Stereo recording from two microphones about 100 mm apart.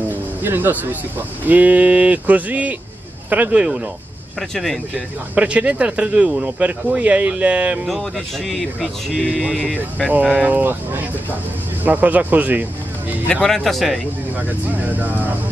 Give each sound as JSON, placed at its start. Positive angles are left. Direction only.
{"t": 0.1, "sound": "music", "side_deg": -20}
{"t": 1.4, "sound": "speech", "side_deg": -15}
{"t": 4.4, "sound": "speech", "side_deg": 0}
{"t": 5.3, "sound": "speech", "side_deg": -15}
{"t": 7.8, "sound": "speech", "side_deg": 0}
{"t": 13.3, "sound": "speech", "side_deg": 5}
{"t": 14.8, "sound": "speech", "side_deg": -15}